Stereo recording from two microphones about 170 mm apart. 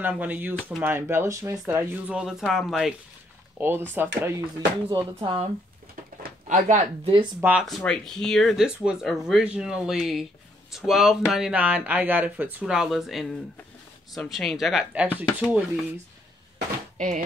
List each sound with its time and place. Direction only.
0.0 s speech: 10° right (ahead or behind)
3.5 s speech: 10° right (ahead or behind)
4.8 s speech: 30° right (ahead or behind)
6.2 s a sound: 50° right (ahead or behind)
7.3 s speech: 10° right (ahead or behind)
7.6 s speech: 5° left (ahead or behind)